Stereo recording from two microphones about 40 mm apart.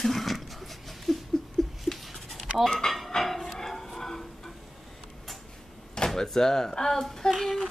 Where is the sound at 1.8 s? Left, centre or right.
Centre.